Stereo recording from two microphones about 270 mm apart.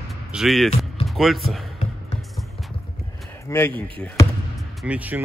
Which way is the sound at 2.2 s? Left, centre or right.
Centre.